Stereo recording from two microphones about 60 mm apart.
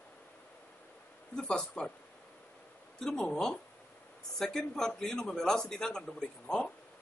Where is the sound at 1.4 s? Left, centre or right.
Centre.